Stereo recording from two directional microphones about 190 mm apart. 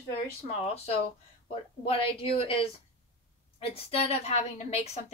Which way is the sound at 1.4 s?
30° left (ahead or behind).